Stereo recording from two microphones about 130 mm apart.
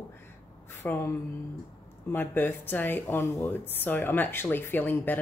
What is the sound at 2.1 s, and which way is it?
Speech, 15° left (ahead or behind).